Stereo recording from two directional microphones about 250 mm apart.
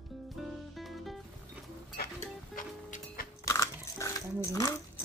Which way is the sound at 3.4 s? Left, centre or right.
Centre.